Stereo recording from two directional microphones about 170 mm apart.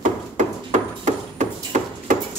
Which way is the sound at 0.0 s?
45° right (ahead or behind).